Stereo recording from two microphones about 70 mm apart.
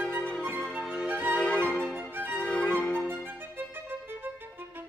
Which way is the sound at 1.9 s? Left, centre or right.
Right.